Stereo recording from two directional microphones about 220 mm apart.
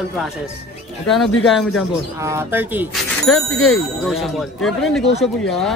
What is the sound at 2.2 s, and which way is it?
Speech, 10° right (ahead or behind).